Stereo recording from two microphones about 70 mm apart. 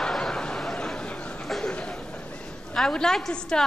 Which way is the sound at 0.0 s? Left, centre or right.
Centre.